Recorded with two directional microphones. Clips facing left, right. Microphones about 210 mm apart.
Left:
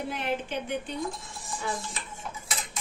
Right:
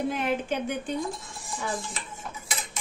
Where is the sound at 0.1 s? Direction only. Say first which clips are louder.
Right 3 dB; 45° right (ahead or behind).